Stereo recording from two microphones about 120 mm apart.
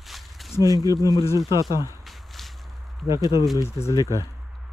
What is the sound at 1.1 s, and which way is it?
Speech, 30° left (ahead or behind).